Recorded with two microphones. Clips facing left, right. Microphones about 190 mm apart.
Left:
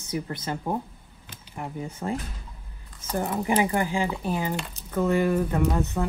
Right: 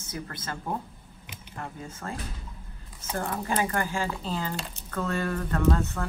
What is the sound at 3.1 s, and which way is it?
Speech, 15° left (ahead or behind).